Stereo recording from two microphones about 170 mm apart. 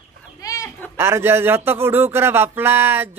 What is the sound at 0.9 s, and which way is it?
Speech, 15° right (ahead or behind).